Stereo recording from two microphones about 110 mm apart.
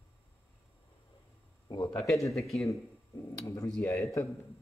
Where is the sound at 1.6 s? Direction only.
40° left (ahead or behind).